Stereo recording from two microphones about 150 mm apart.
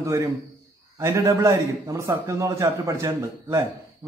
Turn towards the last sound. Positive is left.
turn(degrees=-20)  # may be behind; listen again after turning